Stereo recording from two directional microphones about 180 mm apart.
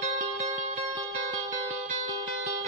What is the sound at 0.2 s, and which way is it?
Music, 40° right (ahead or behind).